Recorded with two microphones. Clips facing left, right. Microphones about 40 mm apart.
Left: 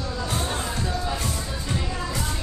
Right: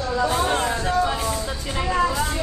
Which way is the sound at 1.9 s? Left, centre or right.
Right.